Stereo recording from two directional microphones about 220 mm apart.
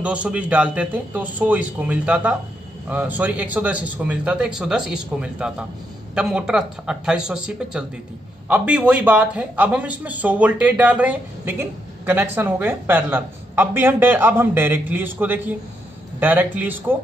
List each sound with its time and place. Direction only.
0.0 s speech: 5° right (ahead or behind)